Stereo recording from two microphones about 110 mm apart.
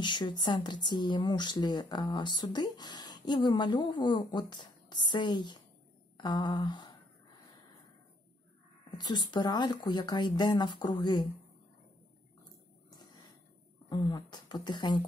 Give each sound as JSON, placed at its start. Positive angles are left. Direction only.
{"t": 0.0, "sound": "speech", "side_deg": 45}
{"t": 8.9, "sound": "speech", "side_deg": 45}
{"t": 13.8, "sound": "speech", "side_deg": 35}